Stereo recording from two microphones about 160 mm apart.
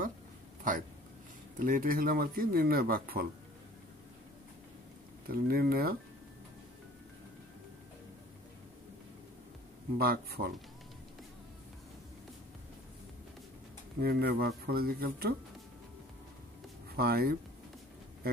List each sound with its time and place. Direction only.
1.6 s speech: 60° right (ahead or behind)
5.3 s speech: 70° right (ahead or behind)
9.9 s speech: 70° right (ahead or behind)
14.0 s speech: 70° right (ahead or behind)
16.9 s speech: 70° right (ahead or behind)